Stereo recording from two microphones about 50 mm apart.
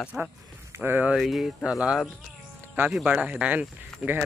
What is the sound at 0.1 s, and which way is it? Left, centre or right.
Speech, right.